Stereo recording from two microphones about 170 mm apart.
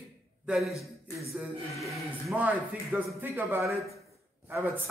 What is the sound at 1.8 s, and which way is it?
Speech, centre (ahead or behind).